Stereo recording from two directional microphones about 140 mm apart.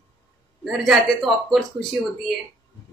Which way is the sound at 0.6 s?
Centre (ahead or behind).